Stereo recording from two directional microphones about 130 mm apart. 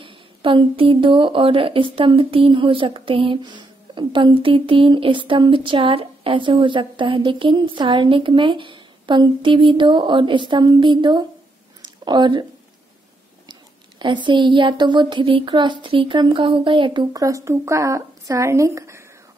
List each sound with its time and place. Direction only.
0.0 s a woman's voice: 40° right (ahead or behind)
11.8 s a sound: 35° right (ahead or behind)
13.5 s a woman's voice: 35° right (ahead or behind)
17.1 s speech: 25° right (ahead or behind)